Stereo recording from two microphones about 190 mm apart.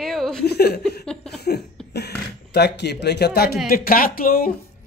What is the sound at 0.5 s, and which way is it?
Speech, 60° left (ahead or behind).